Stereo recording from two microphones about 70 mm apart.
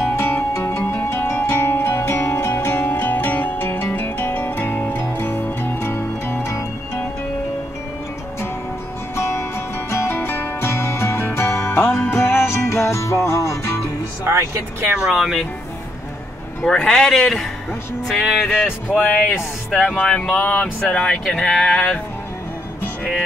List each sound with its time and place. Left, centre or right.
0.1 s music: left
9.1 s music: left
14.2 s speech: right
15.0 s speech: centre
16.6 s speech: centre
18.9 s speech: left
19.7 s speech: centre